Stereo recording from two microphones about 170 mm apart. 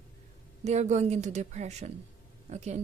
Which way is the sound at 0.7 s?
45° right (ahead or behind).